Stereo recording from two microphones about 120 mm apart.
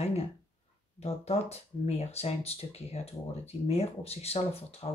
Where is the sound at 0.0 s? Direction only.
60° left (ahead or behind).